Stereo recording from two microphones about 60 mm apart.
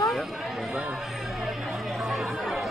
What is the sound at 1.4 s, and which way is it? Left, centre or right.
Chatter, centre.